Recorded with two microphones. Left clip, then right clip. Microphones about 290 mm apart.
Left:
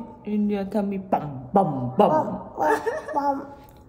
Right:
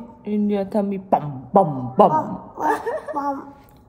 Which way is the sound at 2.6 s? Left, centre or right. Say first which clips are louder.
Right 1 dB; centre.